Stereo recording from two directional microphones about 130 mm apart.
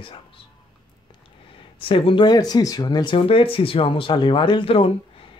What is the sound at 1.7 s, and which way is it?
Speech, 45° left (ahead or behind).